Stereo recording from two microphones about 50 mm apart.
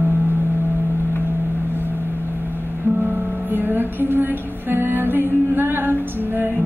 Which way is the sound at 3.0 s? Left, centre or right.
Right.